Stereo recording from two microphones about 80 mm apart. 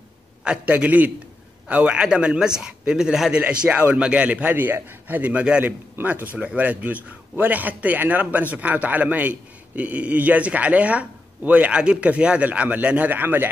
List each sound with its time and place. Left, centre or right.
0.4 s a man's voice: centre